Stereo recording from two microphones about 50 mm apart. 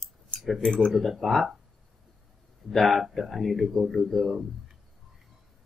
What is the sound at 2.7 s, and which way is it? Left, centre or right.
Speech, centre.